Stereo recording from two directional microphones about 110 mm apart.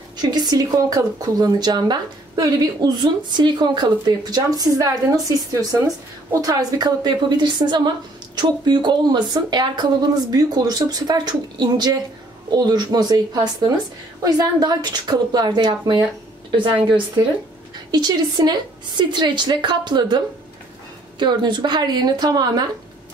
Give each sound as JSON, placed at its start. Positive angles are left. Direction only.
{"t": 0.2, "sound": "speech", "side_deg": -40}
{"t": 17.9, "sound": "a woman's voice", "side_deg": -40}